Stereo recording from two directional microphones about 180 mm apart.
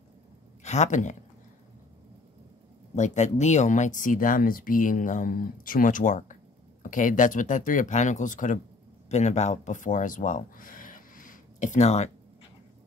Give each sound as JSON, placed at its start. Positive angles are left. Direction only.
{"t": 0.7, "sound": "speech", "side_deg": 40}
{"t": 3.0, "sound": "speech", "side_deg": 40}